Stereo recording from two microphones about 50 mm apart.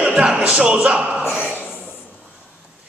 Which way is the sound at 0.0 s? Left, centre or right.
Right.